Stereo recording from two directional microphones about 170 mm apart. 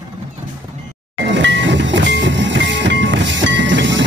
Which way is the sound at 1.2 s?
90° right.